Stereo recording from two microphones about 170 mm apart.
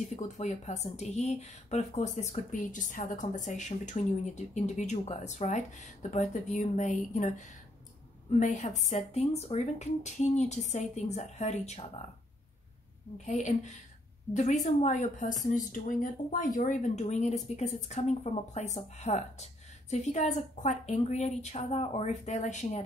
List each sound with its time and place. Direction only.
0.1 s a woman's voice: 45° left (ahead or behind)
13.2 s a woman's voice: 45° left (ahead or behind)